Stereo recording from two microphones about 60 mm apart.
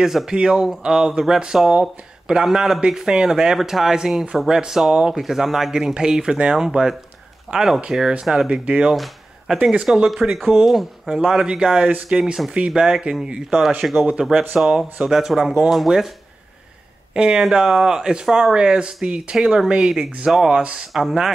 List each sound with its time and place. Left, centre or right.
0.0 s speech: centre
8.9 s a sound: centre
9.6 s speech: centre
9.8 s speech: centre
11.1 s speech: centre
17.1 s speech: centre